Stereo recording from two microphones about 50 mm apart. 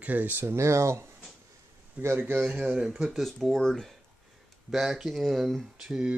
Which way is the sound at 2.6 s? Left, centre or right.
Right.